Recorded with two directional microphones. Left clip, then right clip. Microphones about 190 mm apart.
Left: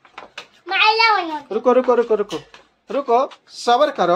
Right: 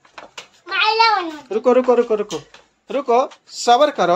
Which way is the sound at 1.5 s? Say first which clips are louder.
Right 1 dB; 10° right (ahead or behind).